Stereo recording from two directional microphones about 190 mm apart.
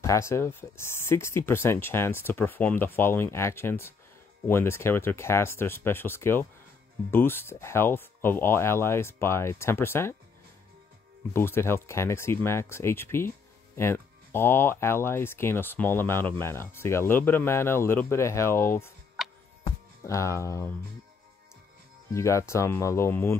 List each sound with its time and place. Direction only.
0.0 s speech: 15° left (ahead or behind)
11.3 s speech: 10° left (ahead or behind)
19.2 s music: centre (ahead or behind)
20.1 s speech: 15° left (ahead or behind)
22.1 s speech: 15° left (ahead or behind)